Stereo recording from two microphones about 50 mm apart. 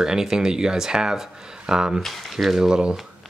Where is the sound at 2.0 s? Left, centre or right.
Centre.